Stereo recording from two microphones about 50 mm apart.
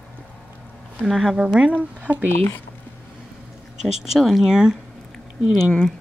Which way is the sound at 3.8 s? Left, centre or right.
Centre.